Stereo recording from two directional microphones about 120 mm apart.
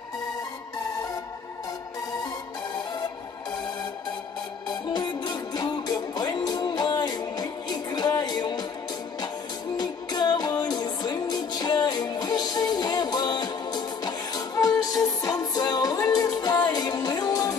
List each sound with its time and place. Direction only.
4.8 s music: 40° left (ahead or behind)
9.8 s music: 35° left (ahead or behind)